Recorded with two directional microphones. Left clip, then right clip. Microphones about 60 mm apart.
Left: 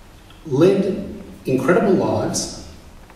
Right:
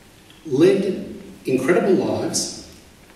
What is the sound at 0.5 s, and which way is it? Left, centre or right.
A man's voice, right.